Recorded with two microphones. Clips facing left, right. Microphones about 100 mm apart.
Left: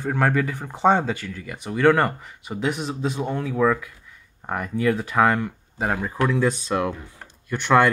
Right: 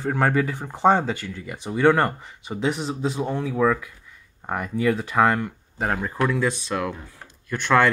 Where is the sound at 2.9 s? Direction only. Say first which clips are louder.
Even; 10° right (ahead or behind).